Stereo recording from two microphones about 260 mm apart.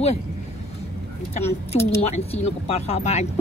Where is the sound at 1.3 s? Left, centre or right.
Left.